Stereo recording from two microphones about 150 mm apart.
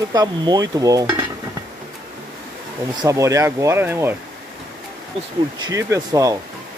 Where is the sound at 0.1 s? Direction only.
25° right (ahead or behind).